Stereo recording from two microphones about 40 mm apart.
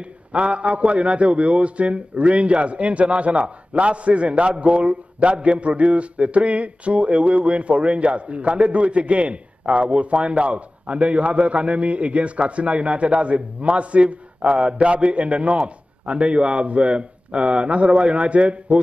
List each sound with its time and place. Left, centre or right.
0.3 s a man's voice: right